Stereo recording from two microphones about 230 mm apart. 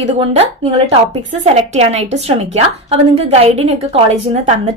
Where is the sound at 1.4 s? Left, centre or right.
Right.